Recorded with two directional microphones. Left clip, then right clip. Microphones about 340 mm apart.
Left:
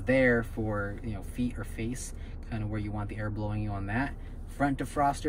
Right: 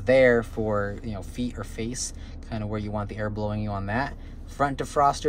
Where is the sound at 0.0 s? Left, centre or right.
Centre.